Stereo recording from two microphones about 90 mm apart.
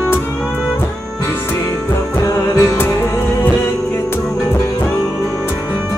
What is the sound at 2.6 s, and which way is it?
Music, 25° left (ahead or behind).